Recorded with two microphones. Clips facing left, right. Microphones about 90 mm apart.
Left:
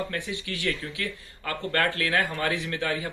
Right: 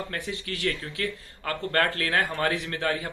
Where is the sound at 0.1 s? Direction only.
45° right (ahead or behind).